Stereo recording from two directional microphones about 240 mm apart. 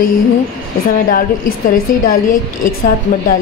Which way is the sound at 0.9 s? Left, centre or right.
Left.